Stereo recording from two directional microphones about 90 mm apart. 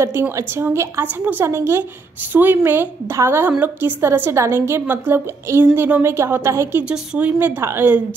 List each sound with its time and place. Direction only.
0.0 s a woman's voice: 30° right (ahead or behind)
6.8 s a woman's voice: 15° right (ahead or behind)